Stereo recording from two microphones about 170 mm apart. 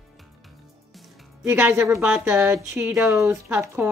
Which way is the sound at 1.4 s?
10° right (ahead or behind).